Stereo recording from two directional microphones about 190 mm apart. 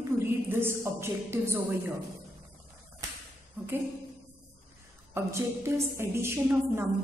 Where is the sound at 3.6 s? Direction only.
10° right (ahead or behind).